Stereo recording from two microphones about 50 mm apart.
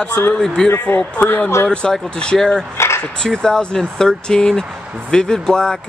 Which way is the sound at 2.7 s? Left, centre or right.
Left.